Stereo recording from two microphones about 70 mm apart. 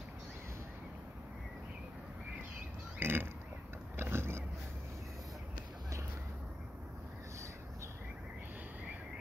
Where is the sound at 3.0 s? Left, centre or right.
Right.